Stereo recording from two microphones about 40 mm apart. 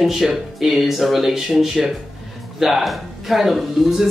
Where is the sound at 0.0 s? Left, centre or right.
Centre.